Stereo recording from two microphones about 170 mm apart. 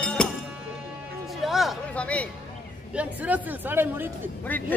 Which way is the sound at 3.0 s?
10° right (ahead or behind).